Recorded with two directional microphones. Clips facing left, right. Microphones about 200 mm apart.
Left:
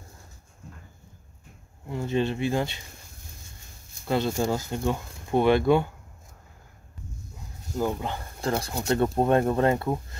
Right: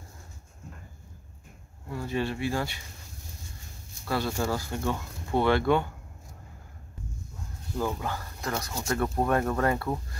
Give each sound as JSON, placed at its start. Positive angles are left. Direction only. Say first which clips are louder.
{"t": 1.9, "sound": "speech", "louder": "left 4 dB", "side_deg": 20}
{"t": 4.0, "sound": "speech", "louder": "left 4 dB", "side_deg": 20}
{"t": 7.7, "sound": "speech", "louder": "left 3 dB", "side_deg": 20}